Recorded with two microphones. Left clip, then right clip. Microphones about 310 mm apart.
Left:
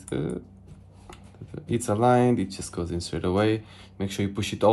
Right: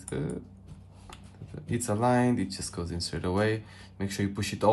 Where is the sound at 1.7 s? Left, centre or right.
Left.